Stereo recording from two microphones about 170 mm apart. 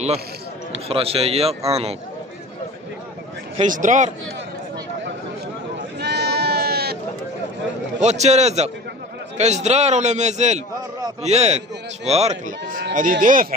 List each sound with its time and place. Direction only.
0.8 s a man's voice: 35° right (ahead or behind)
3.6 s a man's voice: 50° right (ahead or behind)
5.9 s sheep: 75° right (ahead or behind)
8.0 s a man's voice: 40° right (ahead or behind)